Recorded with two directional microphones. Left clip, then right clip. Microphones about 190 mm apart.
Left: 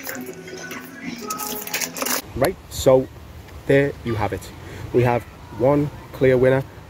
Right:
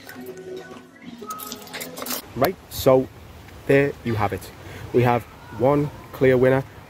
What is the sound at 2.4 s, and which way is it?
Speech, 20° right (ahead or behind).